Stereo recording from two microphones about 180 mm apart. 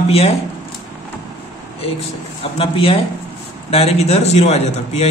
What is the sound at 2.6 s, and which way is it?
A man's voice, 30° left (ahead or behind).